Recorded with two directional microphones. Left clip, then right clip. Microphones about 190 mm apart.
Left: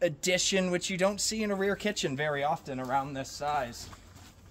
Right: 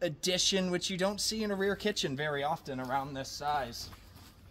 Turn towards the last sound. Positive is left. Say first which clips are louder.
# left 2 dB
turn(degrees=15)  # may be behind; listen again after turning